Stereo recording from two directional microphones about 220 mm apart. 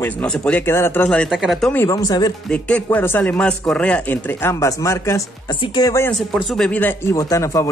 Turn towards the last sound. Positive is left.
turn(degrees=15)  # may be behind; listen again after turning